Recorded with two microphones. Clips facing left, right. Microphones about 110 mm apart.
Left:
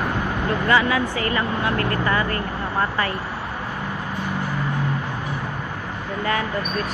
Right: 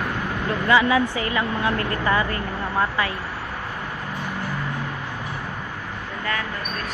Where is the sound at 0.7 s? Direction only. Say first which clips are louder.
Right 2 dB; 15° right (ahead or behind).